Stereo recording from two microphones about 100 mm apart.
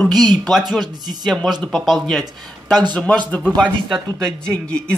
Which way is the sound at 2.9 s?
15° left (ahead or behind).